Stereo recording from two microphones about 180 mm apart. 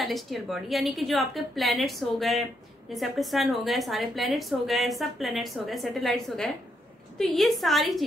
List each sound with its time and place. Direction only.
0.0 s a woman's voice: centre (ahead or behind)